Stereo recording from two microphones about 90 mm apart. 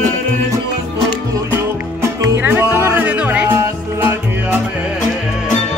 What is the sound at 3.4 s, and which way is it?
Music, 30° right (ahead or behind).